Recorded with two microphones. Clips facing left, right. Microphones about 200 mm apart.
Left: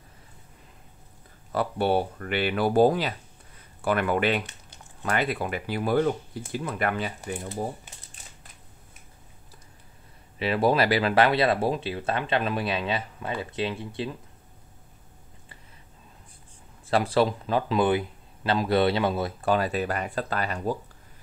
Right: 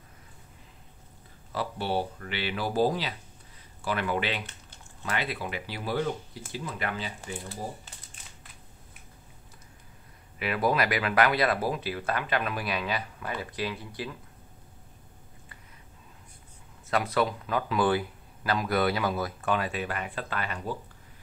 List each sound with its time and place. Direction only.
1.5 s speech: 55° left (ahead or behind)
10.4 s speech: 30° left (ahead or behind)
16.8 s speech: 30° left (ahead or behind)